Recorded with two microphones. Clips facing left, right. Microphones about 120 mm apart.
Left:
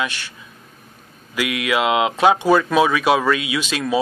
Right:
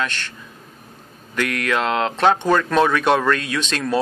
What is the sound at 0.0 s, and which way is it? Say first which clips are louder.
Speech: even; 10° left (ahead or behind).